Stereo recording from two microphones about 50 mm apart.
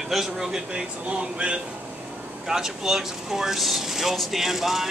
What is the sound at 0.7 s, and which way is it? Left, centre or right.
Speech, right.